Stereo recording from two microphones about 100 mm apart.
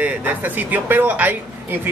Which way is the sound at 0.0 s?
15° right (ahead or behind).